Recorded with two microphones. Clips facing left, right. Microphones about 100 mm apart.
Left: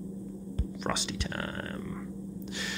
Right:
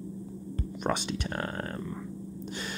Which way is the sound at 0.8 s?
50° right (ahead or behind).